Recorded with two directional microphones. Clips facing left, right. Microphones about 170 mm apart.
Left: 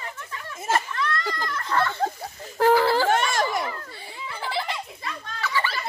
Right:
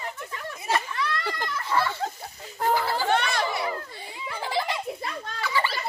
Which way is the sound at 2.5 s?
85° left.